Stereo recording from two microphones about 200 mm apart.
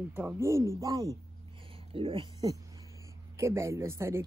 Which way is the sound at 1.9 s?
25° right (ahead or behind).